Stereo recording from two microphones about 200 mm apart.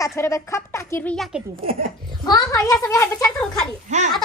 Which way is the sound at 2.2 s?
20° left (ahead or behind).